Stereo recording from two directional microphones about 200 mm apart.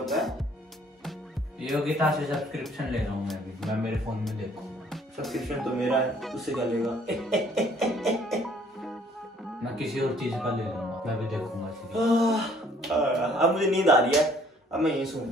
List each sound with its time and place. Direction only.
0.0 s music: centre (ahead or behind)
1.6 s a man's voice: centre (ahead or behind)
9.8 s a man's voice: centre (ahead or behind)